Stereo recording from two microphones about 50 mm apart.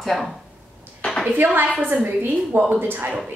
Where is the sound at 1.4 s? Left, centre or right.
Right.